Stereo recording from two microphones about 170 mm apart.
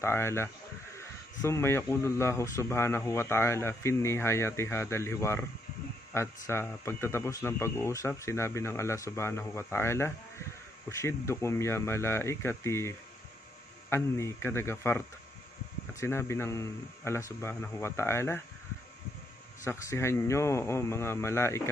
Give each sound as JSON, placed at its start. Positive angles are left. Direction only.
{"t": 0.0, "sound": "a man's voice", "side_deg": 15}
{"t": 19.6, "sound": "a man's voice", "side_deg": 15}